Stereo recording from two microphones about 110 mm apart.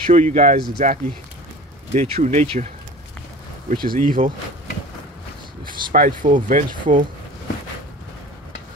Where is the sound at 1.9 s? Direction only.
75° right (ahead or behind).